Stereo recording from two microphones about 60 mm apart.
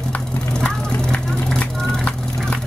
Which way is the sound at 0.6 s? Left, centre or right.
Centre.